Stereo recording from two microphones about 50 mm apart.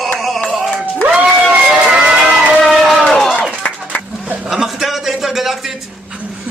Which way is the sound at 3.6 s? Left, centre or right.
Left.